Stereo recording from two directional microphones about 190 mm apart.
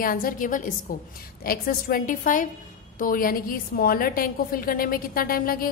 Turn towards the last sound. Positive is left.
turn(degrees=50)  # may be behind; listen again after turning